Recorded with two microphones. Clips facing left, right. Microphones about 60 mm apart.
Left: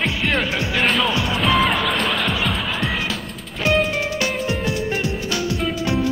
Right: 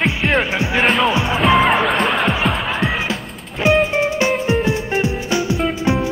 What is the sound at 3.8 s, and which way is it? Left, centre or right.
Music, right.